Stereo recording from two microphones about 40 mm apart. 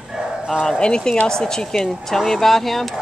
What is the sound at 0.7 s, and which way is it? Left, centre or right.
Speech, left.